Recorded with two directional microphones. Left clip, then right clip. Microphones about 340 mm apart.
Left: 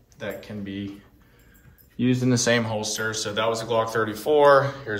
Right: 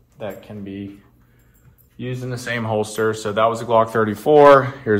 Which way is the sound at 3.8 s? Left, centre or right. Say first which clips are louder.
Right 6 dB; centre.